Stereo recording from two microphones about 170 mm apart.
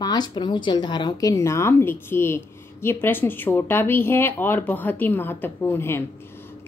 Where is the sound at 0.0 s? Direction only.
25° left (ahead or behind).